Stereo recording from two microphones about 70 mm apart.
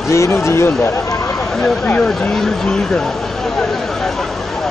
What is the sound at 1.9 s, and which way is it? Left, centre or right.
Speech, centre.